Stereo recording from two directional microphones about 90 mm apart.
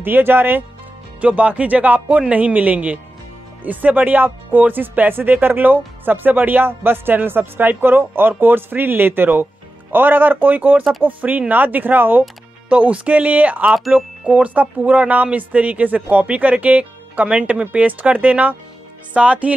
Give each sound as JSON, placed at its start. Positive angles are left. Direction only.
{"t": 0.0, "sound": "speech", "side_deg": -25}